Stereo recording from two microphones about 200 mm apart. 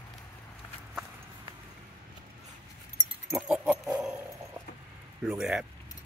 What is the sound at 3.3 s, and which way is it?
Pig, 5° right (ahead or behind).